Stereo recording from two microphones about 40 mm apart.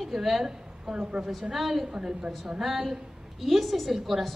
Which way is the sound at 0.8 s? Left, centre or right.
Centre.